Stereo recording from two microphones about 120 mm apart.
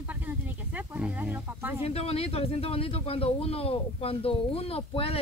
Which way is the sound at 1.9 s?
55° left (ahead or behind).